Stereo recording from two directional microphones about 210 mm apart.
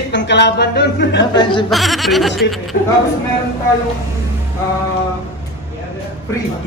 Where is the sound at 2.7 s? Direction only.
40° left (ahead or behind).